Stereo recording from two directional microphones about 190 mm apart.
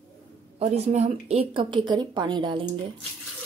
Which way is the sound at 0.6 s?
35° right (ahead or behind).